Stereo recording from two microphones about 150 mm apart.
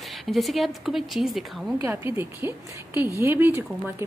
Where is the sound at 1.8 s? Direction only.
15° right (ahead or behind).